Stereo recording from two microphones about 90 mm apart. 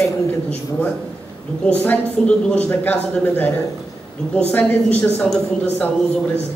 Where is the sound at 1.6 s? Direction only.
20° left (ahead or behind).